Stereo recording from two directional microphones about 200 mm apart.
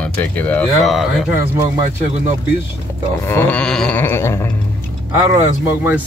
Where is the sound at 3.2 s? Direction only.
15° left (ahead or behind).